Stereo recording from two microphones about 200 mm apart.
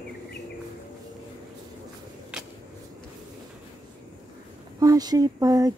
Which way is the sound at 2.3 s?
5° right (ahead or behind).